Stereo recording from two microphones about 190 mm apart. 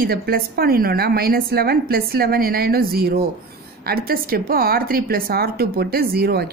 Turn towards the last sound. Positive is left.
turn(degrees=-55)  # may be behind; listen again after turning